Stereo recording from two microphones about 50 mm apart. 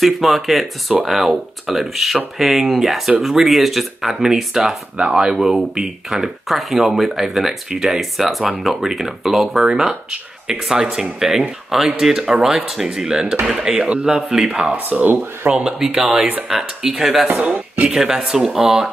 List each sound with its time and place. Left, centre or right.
0.0 s speech: centre
14.9 s speech: right
15.6 s speech: centre
17.4 s speech: right
17.8 s speech: centre